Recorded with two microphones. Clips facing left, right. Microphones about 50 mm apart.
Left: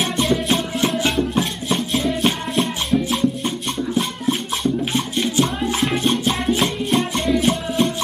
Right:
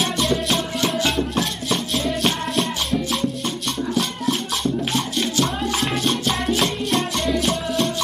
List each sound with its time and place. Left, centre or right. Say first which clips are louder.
0.0 s music: left 2 dB; centre